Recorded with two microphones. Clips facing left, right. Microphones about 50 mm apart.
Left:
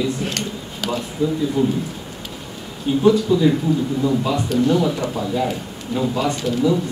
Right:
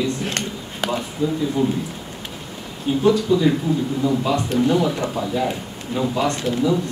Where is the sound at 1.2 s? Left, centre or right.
Centre.